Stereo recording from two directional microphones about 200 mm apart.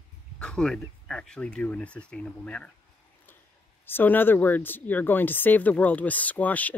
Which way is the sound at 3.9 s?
10° left (ahead or behind).